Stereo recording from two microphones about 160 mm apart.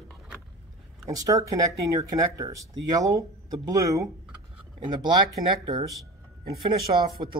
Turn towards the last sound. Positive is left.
turn(degrees=-30)  # may be behind; listen again after turning